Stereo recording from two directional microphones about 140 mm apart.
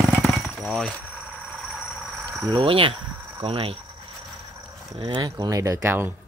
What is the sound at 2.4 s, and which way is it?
Speech, 35° right (ahead or behind).